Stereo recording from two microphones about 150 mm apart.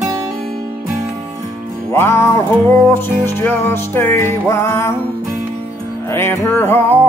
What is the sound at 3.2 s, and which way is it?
Music, 15° left (ahead or behind).